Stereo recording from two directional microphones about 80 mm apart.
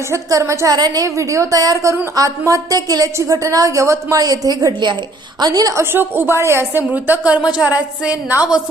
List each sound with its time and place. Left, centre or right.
0.1 s a woman's voice: right
0.7 s a woman's voice: right
4.2 s a woman's voice: right
5.8 s a woman's voice: right